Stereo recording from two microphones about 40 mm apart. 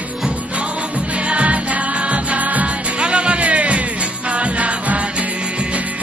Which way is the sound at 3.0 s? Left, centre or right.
Right.